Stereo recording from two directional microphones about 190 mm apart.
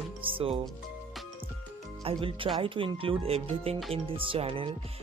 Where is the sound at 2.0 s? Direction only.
30° right (ahead or behind).